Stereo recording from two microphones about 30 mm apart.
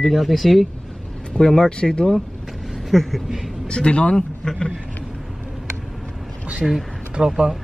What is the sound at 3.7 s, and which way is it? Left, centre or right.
Speech, left.